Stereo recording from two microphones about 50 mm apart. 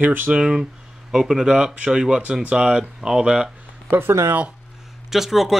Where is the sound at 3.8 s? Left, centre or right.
Right.